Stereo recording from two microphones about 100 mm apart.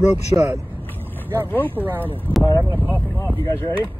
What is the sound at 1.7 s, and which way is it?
Speech, 20° right (ahead or behind).